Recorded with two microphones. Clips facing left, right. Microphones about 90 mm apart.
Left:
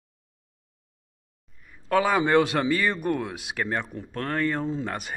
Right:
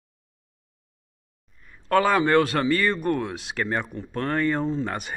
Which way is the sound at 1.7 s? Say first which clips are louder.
Right 2 dB; 10° left (ahead or behind).